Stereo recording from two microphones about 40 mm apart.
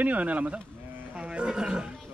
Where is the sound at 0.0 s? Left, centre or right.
Right.